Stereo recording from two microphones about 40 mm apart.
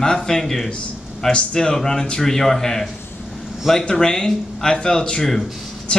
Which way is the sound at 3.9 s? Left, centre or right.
Centre.